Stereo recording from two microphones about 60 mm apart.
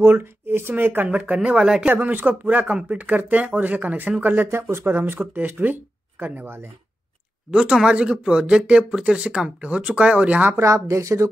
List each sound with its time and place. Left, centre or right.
0.0 s speech: right
1.0 s speech: right
1.9 s speech: right
4.6 s speech: right
7.7 s speech: centre
10.5 s speech: right